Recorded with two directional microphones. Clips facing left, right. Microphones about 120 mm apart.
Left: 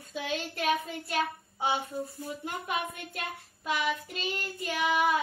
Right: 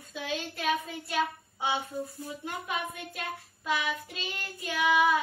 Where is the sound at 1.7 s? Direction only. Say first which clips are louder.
Left 1 dB; 40° left (ahead or behind).